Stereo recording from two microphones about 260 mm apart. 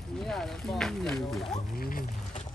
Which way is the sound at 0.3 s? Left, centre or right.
Centre.